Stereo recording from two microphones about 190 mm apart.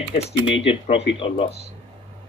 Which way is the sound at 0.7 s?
30° left (ahead or behind).